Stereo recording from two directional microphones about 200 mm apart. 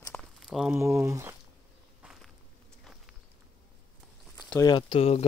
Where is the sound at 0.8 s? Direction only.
15° right (ahead or behind).